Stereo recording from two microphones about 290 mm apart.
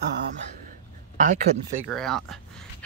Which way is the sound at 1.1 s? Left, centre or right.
Right.